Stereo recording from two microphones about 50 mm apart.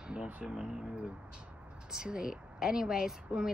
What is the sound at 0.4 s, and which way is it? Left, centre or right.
Speech, centre.